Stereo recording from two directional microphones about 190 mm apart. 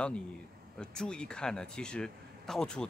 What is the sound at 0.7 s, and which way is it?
A man's voice, 5° left (ahead or behind).